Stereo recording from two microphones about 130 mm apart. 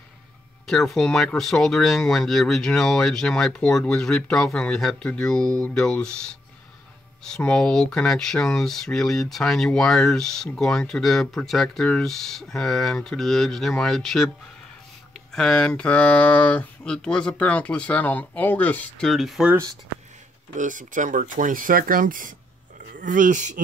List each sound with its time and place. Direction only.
0.7 s speech: 5° left (ahead or behind)
7.2 s speech: 5° left (ahead or behind)
15.3 s speech: 5° left (ahead or behind)
19.0 s speech: centre (ahead or behind)
20.5 s speech: 80° right